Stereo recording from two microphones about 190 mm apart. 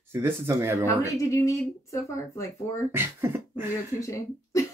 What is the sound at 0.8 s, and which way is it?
Speech, 15° left (ahead or behind).